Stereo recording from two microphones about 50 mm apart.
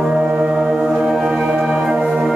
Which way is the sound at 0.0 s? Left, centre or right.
Centre.